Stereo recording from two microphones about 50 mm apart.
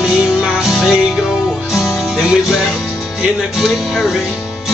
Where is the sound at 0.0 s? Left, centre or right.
Centre.